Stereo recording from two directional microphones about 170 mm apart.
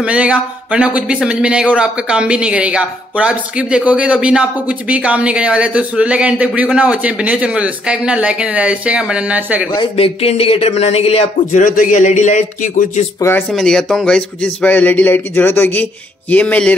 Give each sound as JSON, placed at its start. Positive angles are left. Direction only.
{"t": 0.0, "sound": "speech", "side_deg": -5}
{"t": 9.7, "sound": "speech", "side_deg": 30}
{"t": 11.6, "sound": "speech", "side_deg": 50}
{"t": 13.5, "sound": "speech", "side_deg": 5}